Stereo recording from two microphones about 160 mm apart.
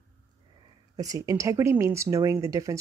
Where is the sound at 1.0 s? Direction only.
20° right (ahead or behind).